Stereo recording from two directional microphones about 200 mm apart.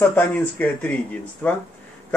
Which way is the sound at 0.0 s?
10° left (ahead or behind).